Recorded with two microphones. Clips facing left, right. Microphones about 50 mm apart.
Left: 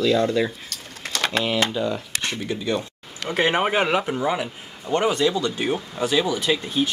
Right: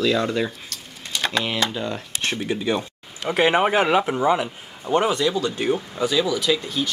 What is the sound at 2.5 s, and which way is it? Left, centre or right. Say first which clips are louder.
Speech: right 1 dB; right.